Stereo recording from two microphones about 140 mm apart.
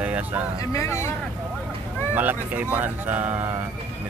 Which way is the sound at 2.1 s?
10° right (ahead or behind).